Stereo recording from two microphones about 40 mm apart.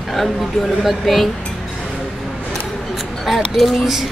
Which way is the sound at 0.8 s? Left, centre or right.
Centre.